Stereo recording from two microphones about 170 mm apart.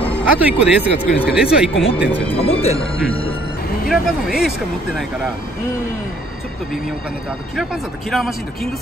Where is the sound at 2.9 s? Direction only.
5° left (ahead or behind).